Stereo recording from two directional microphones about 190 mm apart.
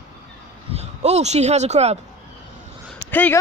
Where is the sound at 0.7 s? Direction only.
35° right (ahead or behind).